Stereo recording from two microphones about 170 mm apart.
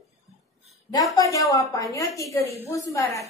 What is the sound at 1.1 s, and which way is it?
A woman's voice, 20° left (ahead or behind).